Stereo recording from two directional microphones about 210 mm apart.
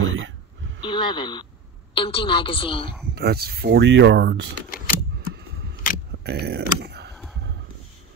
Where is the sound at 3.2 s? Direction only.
50° right (ahead or behind).